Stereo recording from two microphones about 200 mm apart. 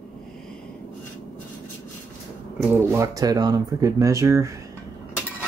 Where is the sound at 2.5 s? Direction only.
10° right (ahead or behind).